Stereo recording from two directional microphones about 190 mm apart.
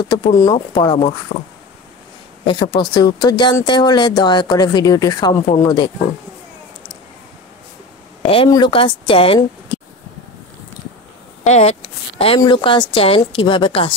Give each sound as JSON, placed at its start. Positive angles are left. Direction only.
{"t": 0.0, "sound": "speech", "side_deg": 25}
{"t": 2.4, "sound": "speech", "side_deg": 20}
{"t": 8.3, "sound": "speech", "side_deg": 25}
{"t": 11.4, "sound": "a sound", "side_deg": 35}
{"t": 12.4, "sound": "speech", "side_deg": 25}